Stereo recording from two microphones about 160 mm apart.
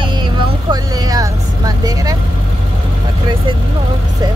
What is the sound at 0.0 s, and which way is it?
Vehicle, 30° right (ahead or behind).